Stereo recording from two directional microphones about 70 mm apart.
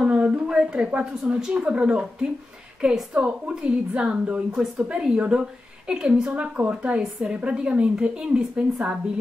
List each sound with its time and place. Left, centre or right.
0.0 s a woman's voice: centre